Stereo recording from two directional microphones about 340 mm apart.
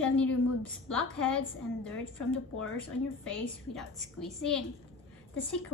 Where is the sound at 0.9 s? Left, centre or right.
Centre.